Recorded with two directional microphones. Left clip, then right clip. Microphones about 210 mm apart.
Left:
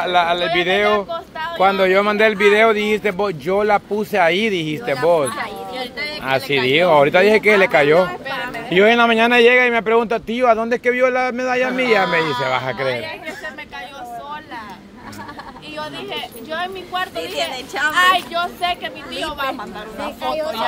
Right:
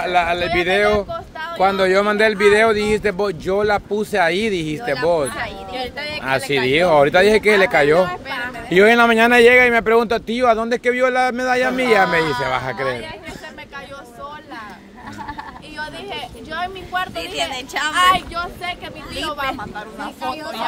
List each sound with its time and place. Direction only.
0.0 s speech: 15° right (ahead or behind)
0.8 s a sound: centre (ahead or behind)
1.6 s speech: 15° right (ahead or behind)
8.1 s speech: 30° right (ahead or behind); by 12.9 s 10° right (ahead or behind)
15.8 s a sound: 5° right (ahead or behind)
17.4 s a woman's voice: 50° right (ahead or behind)
17.9 s speech: 5° right (ahead or behind)
18.3 s speech: 10° left (ahead or behind)
20.2 s speech: 15° left (ahead or behind)